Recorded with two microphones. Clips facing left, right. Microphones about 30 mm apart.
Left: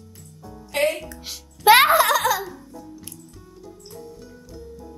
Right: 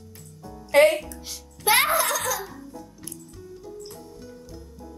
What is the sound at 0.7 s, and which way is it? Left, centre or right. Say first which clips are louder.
Music: right 5 dB; right.